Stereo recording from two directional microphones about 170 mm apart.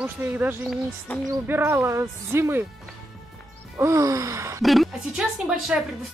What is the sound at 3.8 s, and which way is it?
Speech, 20° right (ahead or behind).